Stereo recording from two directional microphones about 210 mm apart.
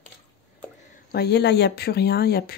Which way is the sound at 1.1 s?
50° left (ahead or behind).